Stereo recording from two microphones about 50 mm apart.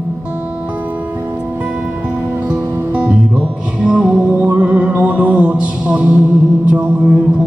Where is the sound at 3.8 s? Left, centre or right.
Right.